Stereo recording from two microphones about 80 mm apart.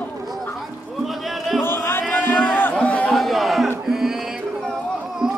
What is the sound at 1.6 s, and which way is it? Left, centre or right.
Music, left.